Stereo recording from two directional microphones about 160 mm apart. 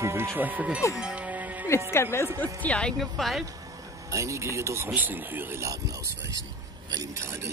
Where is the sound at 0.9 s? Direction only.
5° right (ahead or behind).